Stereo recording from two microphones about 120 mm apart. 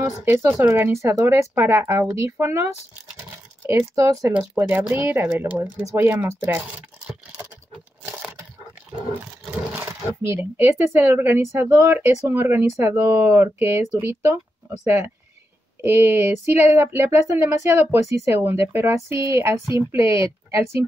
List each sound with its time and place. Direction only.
0.2 s speech: 20° right (ahead or behind)
3.6 s speech: 25° right (ahead or behind)
9.8 s speech: 20° right (ahead or behind)